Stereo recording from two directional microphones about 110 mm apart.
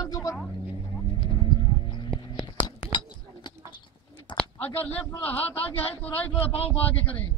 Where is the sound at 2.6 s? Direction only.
55° left (ahead or behind).